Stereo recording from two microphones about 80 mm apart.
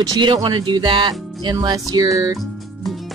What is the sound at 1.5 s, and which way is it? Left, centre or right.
Speech, right.